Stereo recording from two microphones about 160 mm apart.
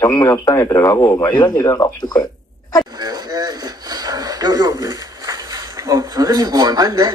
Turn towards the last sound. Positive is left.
turn(degrees=-25)  # may be behind; listen again after turning